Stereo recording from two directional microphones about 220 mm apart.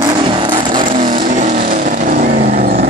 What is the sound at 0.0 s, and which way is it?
Vehicle, 20° right (ahead or behind).